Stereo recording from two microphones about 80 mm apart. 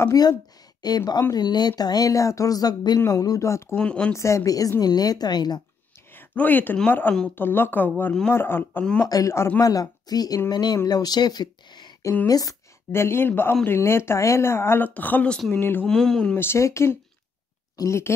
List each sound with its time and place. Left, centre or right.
0.1 s a woman's voice: left
3.1 s speech: left
3.7 s speech: centre
4.1 s speech: left
6.1 s speech: left
9.1 s speech: left
10.5 s a woman's voice: left
12.3 s speech: left
12.9 s speech: left
15.3 s speech: centre
15.6 s speech: left
15.9 s speech: centre
16.3 s speech: left